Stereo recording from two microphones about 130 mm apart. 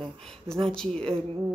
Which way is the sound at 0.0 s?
5° left (ahead or behind).